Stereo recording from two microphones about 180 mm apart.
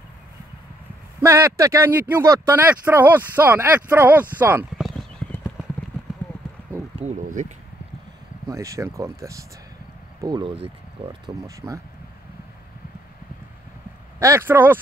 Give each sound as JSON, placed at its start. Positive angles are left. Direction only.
{"t": 1.2, "sound": "speech", "side_deg": -15}
{"t": 4.8, "sound": "clip-clop", "side_deg": 10}
{"t": 7.1, "sound": "speech", "side_deg": -45}
{"t": 8.5, "sound": "speech", "side_deg": -15}
{"t": 11.4, "sound": "speech", "side_deg": -15}
{"t": 14.2, "sound": "speech", "side_deg": -15}